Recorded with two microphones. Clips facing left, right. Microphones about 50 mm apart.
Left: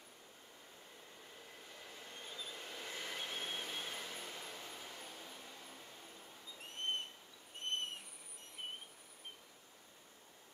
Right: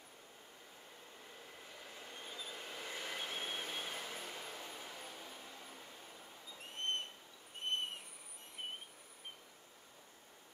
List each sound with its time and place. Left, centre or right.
1.8 s train: centre
7.6 s owl: centre